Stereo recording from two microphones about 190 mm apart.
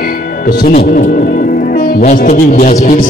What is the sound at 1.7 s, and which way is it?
Music, 50° left (ahead or behind).